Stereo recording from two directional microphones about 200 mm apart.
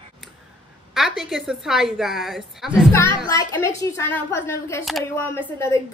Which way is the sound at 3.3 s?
15° left (ahead or behind).